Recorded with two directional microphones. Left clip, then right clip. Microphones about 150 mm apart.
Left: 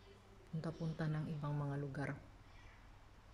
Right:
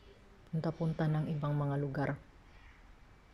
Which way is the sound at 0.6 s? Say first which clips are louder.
Right 9 dB; 10° right (ahead or behind).